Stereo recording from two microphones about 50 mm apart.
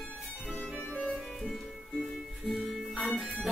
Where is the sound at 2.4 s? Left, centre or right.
Centre.